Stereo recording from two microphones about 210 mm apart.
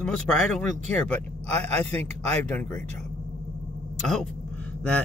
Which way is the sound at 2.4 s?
5° left (ahead or behind).